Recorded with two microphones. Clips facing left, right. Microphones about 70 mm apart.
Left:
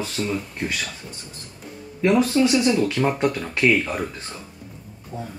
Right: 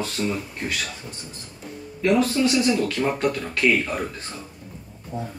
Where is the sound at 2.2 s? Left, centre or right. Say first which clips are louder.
Left 2 dB; centre.